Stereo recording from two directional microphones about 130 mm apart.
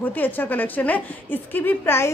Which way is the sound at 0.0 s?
15° left (ahead or behind).